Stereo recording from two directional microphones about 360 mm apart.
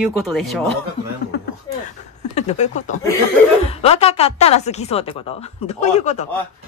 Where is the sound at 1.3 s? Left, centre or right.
Left.